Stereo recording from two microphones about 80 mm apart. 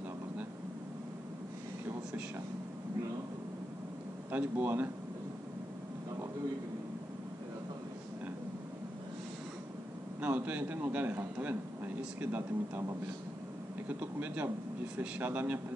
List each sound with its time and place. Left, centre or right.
4.3 s a man's voice: right
10.2 s a man's voice: right
13.8 s a man's voice: right